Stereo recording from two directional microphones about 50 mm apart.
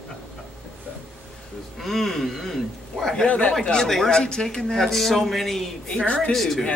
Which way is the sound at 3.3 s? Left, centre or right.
Left.